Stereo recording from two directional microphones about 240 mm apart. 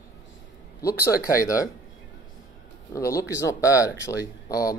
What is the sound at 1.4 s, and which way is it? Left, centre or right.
Speech, centre.